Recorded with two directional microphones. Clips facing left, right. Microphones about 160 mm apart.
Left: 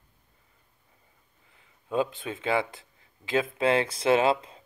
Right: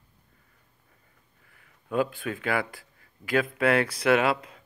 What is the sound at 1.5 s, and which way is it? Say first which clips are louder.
Speech: even; 20° left (ahead or behind).